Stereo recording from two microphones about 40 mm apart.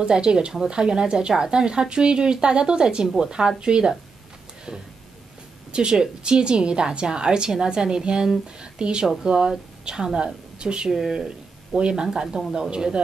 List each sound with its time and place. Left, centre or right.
0.0 s a woman's voice: right
9.0 s a woman's voice: centre